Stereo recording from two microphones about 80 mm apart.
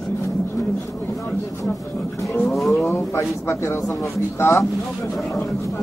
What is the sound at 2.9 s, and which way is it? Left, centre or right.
Speech, left.